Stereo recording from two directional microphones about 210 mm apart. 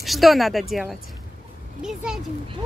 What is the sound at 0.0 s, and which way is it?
Speech, centre (ahead or behind).